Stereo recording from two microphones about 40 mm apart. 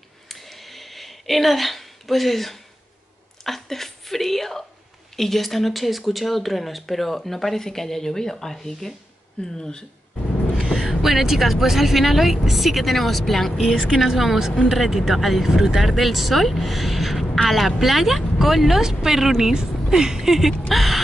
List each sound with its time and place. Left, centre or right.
0.3 s a sound: centre
3.4 s a woman's voice: centre
10.6 s vehicle: centre
10.9 s speech: centre